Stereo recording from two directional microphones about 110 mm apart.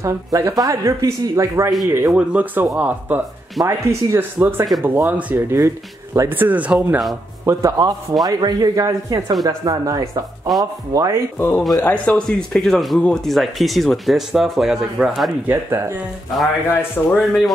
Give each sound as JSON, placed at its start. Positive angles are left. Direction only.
{"t": 0.0, "sound": "speech", "side_deg": -30}
{"t": 7.4, "sound": "speech", "side_deg": -25}
{"t": 8.3, "sound": "speech", "side_deg": -40}
{"t": 11.3, "sound": "speech", "side_deg": 20}
{"t": 15.4, "sound": "speech", "side_deg": -20}
{"t": 16.7, "sound": "speech", "side_deg": 15}
{"t": 17.2, "sound": "speech", "side_deg": 0}